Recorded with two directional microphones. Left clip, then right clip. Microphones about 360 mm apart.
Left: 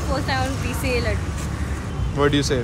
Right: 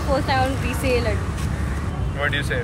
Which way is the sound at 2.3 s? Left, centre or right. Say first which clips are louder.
Left 3 dB; centre.